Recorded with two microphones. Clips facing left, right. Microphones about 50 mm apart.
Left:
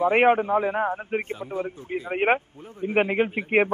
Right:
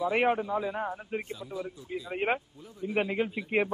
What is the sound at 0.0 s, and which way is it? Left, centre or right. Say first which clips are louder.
A man's voice: left 8 dB; left.